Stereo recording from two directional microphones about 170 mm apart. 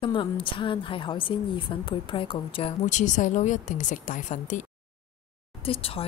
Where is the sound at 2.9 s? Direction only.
45° left (ahead or behind).